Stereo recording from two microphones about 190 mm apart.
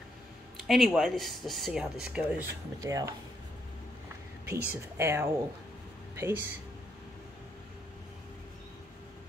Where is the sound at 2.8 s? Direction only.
15° right (ahead or behind).